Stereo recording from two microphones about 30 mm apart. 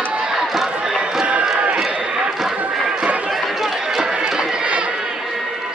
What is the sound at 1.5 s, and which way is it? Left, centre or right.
Run, right.